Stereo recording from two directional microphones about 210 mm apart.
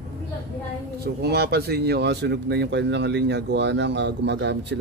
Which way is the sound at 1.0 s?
50° right (ahead or behind).